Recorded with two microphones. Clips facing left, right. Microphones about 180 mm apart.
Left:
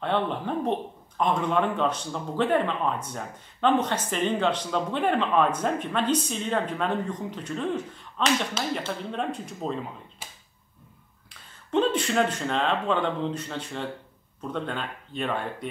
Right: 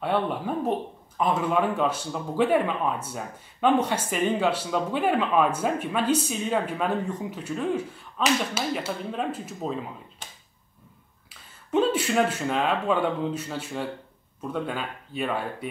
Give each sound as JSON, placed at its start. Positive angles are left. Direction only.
{"t": 0.0, "sound": "speech", "side_deg": -5}
{"t": 11.7, "sound": "speech", "side_deg": -10}